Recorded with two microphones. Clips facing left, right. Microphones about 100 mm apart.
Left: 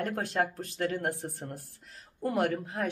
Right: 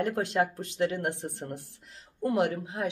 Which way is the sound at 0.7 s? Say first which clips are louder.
Right 2 dB; 20° right (ahead or behind).